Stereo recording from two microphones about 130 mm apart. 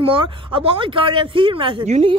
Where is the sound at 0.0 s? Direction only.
40° right (ahead or behind).